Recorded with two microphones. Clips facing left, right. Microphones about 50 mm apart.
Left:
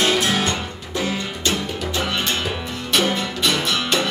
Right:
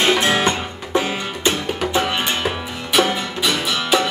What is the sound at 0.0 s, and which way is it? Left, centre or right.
Music, right.